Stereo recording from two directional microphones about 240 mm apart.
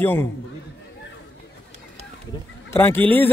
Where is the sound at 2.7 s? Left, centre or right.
Centre.